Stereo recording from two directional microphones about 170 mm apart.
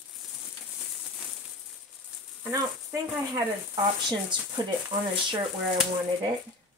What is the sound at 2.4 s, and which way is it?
Speech, 20° right (ahead or behind).